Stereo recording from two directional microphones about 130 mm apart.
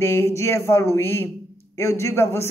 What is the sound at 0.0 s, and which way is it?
A man's voice, 20° left (ahead or behind).